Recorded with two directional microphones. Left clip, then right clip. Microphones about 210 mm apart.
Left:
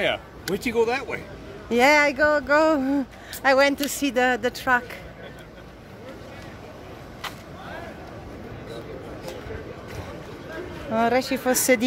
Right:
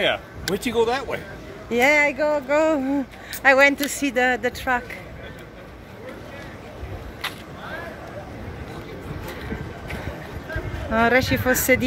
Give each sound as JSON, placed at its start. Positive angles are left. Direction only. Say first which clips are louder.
{"t": 0.0, "sound": "speech", "louder": "right 3 dB", "side_deg": 15}
{"t": 0.6, "sound": "speech", "louder": "right 1 dB", "side_deg": 0}
{"t": 1.7, "sound": "a woman's voice", "louder": "even", "side_deg": 30}
{"t": 10.9, "sound": "speech", "louder": "right 3 dB", "side_deg": 0}